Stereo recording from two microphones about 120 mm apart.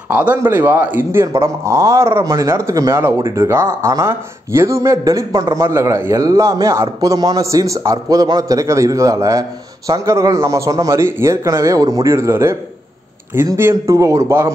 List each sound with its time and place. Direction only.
0.1 s speech: 15° right (ahead or behind)
13.6 s speech: 25° right (ahead or behind)